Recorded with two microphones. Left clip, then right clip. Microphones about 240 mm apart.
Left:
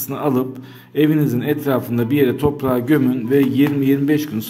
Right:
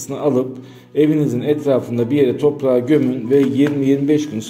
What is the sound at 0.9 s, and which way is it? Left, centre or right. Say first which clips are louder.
A man's voice: right 1 dB; left.